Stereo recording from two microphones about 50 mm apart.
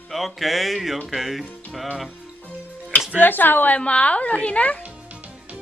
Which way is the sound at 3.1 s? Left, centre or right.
Left.